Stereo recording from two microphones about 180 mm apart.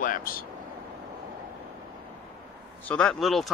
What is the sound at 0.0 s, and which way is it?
Speech, 50° left (ahead or behind).